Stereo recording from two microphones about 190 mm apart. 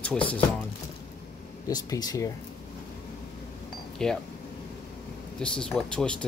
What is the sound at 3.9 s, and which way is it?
Speech, 5° left (ahead or behind).